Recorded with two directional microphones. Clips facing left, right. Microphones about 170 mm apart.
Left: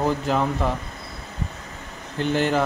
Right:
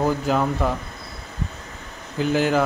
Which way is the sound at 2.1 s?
5° right (ahead or behind).